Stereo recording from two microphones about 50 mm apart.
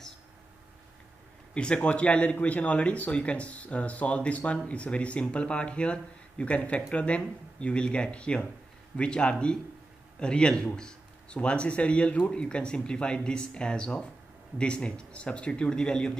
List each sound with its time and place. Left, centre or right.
1.5 s speech: left